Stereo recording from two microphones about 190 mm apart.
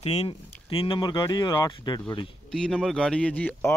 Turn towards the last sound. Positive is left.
turn(degrees=10)  # may be behind; listen again after turning